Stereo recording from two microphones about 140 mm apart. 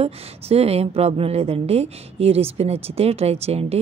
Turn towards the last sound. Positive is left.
turn(degrees=-45)  # may be behind; listen again after turning